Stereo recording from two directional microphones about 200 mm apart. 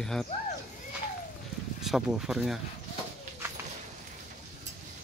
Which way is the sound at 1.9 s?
Centre (ahead or behind).